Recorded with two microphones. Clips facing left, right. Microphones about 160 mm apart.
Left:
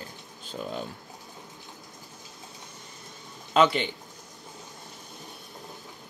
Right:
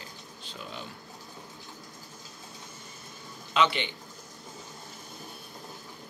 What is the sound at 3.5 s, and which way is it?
Speech, 45° left (ahead or behind).